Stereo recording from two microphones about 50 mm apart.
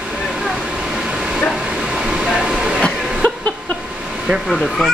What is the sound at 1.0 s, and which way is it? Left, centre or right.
Vehicle, centre.